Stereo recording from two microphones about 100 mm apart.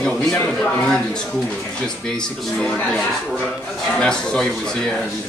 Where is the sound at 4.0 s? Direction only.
5° left (ahead or behind).